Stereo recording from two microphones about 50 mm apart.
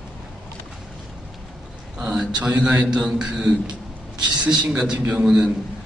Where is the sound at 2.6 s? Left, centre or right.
Right.